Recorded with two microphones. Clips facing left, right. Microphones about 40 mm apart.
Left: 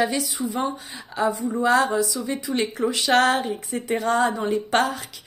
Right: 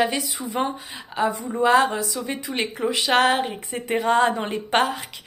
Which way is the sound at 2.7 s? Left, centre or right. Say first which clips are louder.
Even; centre.